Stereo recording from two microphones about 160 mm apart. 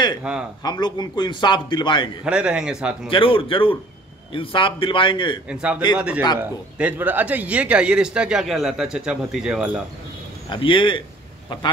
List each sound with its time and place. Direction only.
0.2 s speech: 5° right (ahead or behind)
0.7 s a man's voice: 25° left (ahead or behind)
2.2 s speech: 5° right (ahead or behind)
3.1 s a man's voice: 35° left (ahead or behind)
5.5 s speech: 5° right (ahead or behind)
10.5 s a man's voice: 30° left (ahead or behind)